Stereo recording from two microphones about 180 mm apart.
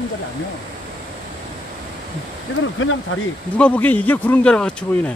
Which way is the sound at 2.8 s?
90° left.